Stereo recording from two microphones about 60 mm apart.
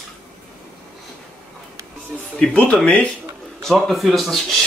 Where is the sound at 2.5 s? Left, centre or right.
Centre.